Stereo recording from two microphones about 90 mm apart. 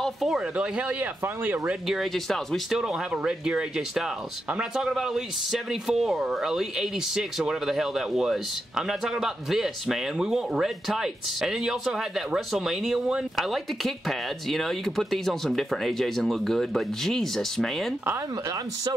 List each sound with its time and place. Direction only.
0.0 s speech: centre (ahead or behind)
0.6 s speech: 15° right (ahead or behind)
1.2 s speech: 25° right (ahead or behind)
1.9 s speech: centre (ahead or behind)
2.8 s speech: 10° right (ahead or behind)